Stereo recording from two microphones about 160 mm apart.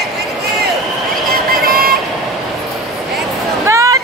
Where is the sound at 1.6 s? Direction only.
65° right (ahead or behind).